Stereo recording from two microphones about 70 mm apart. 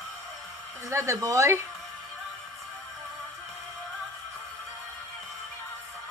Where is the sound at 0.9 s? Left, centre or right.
Right.